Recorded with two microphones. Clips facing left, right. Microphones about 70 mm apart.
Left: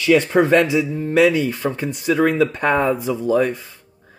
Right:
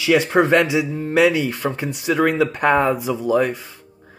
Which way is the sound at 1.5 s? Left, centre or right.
Centre.